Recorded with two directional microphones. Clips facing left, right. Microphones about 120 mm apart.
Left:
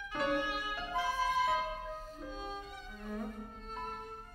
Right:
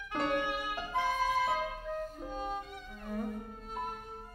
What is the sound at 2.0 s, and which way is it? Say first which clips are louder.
Music: right 6 dB; 55° right (ahead or behind).